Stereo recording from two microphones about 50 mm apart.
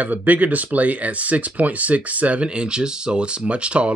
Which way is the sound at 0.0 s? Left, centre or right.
Right.